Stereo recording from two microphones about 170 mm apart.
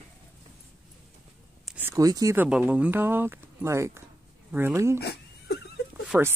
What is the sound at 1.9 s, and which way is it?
Speech, 20° right (ahead or behind).